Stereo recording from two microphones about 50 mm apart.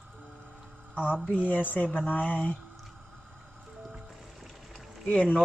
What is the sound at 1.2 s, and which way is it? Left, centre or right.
Speech, left.